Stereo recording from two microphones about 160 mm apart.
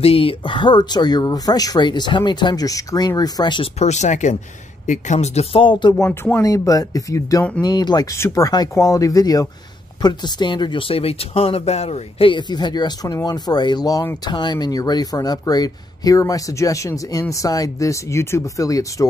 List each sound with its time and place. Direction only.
0.0 s speech: 35° left (ahead or behind)
3.8 s speech: 45° left (ahead or behind); by 19.0 s 20° left (ahead or behind)